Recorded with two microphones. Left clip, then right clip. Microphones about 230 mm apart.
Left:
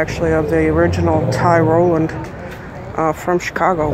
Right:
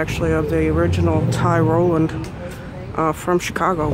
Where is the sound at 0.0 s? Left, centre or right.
Centre.